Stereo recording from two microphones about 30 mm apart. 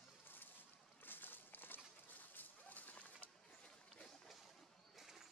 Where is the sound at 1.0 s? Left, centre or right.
Left.